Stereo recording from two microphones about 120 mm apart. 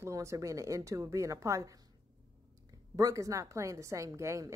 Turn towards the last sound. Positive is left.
turn(degrees=-25)  # may be behind; listen again after turning